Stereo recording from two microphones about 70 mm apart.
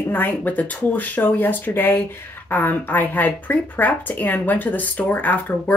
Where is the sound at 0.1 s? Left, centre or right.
Left.